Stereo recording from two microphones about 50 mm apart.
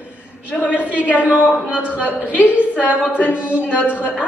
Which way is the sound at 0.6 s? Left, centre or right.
Right.